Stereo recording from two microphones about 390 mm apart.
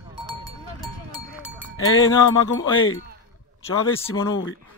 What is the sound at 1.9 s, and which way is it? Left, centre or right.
Music, left.